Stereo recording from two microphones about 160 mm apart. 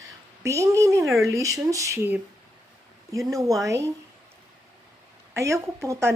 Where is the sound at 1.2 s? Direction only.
20° right (ahead or behind).